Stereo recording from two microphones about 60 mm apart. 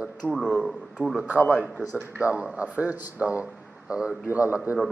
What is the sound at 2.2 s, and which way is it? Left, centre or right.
Speech, right.